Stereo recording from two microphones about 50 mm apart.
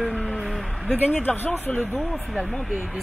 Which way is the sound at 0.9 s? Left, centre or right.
Left.